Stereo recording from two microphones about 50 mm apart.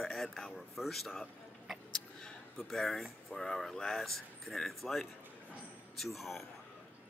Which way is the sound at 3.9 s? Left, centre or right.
Centre.